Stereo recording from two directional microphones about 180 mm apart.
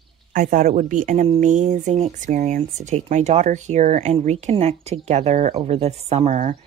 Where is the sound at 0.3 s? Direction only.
50° right (ahead or behind).